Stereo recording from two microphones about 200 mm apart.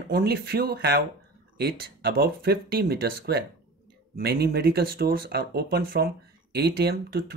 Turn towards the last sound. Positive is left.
turn(degrees=-50)  # may be behind; listen again after turning